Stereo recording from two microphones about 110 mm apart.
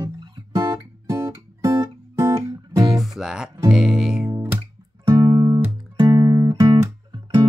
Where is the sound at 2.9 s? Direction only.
Centre (ahead or behind).